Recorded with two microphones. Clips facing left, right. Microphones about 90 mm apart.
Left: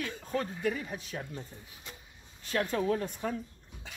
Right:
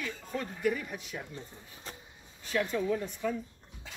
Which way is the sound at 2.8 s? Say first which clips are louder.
Even; 55° left (ahead or behind).